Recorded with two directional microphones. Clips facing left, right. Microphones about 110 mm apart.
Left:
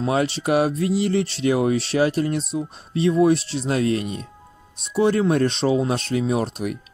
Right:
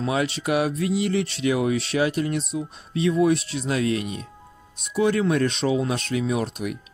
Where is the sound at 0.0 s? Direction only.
40° left (ahead or behind).